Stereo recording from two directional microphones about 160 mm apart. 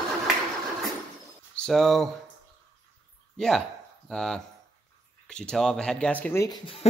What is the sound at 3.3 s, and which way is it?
Speech, 5° left (ahead or behind).